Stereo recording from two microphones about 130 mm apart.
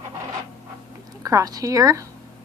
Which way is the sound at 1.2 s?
25° right (ahead or behind).